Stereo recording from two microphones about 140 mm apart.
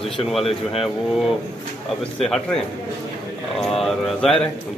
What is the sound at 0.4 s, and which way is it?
Speech, 45° left (ahead or behind).